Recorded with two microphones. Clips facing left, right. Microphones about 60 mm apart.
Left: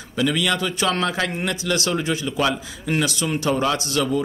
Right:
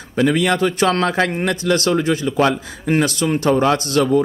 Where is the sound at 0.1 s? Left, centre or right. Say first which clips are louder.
Right 5 dB; right.